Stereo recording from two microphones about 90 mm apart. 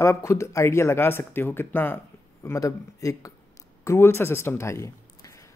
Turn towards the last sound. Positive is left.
turn(degrees=30)  # may be behind; listen again after turning